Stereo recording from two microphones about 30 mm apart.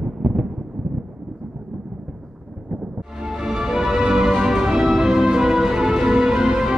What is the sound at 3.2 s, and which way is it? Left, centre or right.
Music, centre.